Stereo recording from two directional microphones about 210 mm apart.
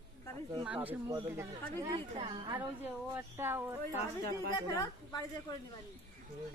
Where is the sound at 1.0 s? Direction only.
15° right (ahead or behind).